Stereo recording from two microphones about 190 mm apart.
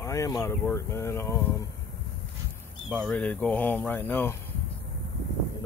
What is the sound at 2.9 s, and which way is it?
Speech, 5° left (ahead or behind).